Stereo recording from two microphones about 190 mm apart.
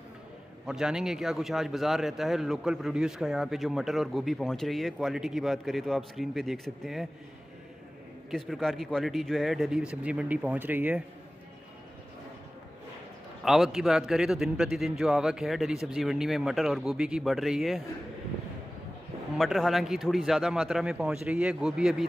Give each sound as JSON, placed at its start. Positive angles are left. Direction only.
{"t": 0.7, "sound": "a man's voice", "side_deg": -5}
{"t": 8.3, "sound": "a man's voice", "side_deg": 0}
{"t": 13.4, "sound": "a man's voice", "side_deg": 0}
{"t": 19.3, "sound": "a man's voice", "side_deg": 0}